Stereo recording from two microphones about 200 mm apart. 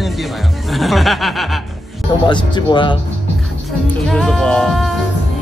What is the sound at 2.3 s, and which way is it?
Speech, 25° left (ahead or behind).